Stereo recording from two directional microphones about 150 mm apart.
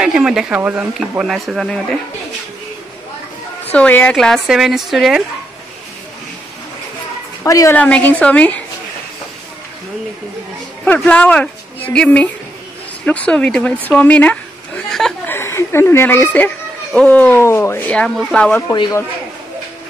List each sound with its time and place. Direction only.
0.0 s speech: 5° right (ahead or behind)
3.7 s speech: 10° left (ahead or behind)
7.4 s speech: 20° left (ahead or behind)
7.7 s speech: 10° left (ahead or behind)
10.9 s speech: 10° left (ahead or behind)
15.2 s a woman's voice: 15° left (ahead or behind)
18.7 s speech: 25° left (ahead or behind)